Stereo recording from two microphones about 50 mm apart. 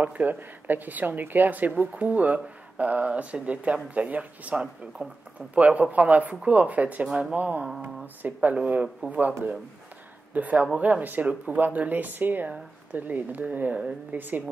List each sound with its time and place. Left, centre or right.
0.0 s a woman's voice: right
5.0 s a woman's voice: centre
10.3 s a woman's voice: right